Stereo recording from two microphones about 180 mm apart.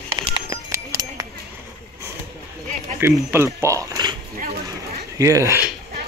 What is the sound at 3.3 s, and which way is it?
Speech, 15° right (ahead or behind).